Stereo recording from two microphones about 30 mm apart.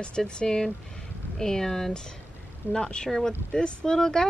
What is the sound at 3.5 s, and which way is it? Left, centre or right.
Speech, left.